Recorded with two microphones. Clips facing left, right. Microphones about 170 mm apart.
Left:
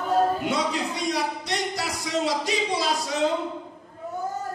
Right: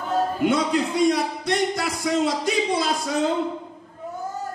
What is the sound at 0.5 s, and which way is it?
A man's voice, 55° right (ahead or behind).